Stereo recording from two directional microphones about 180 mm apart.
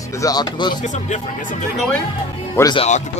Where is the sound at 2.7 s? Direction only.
35° left (ahead or behind).